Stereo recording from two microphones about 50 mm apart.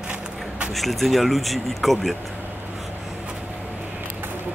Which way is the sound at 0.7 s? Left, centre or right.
Centre.